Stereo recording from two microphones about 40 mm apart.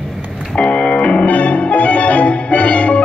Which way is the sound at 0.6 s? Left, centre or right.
Left.